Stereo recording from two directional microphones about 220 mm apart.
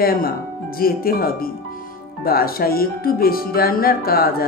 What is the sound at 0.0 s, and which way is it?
Speech, 45° left (ahead or behind).